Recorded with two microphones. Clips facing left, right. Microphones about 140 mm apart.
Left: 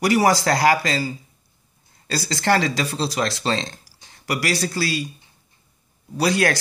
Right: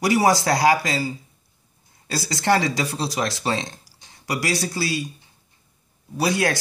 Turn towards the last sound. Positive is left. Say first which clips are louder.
# left 2 dB
turn(degrees=-15)  # may be behind; listen again after turning